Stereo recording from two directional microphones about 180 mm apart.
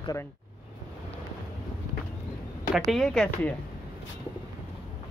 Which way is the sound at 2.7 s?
Centre (ahead or behind).